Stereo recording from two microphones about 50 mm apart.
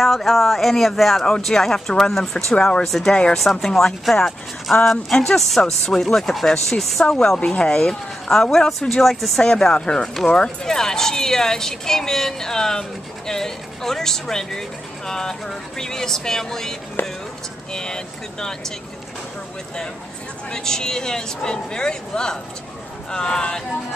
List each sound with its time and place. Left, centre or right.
0.0 s speech: centre
2.8 s speech: centre
3.1 s speech: centre
3.3 s speech: centre
7.2 s speech: centre
9.4 s speech: centre
17.7 s speech: centre
20.5 s speech: centre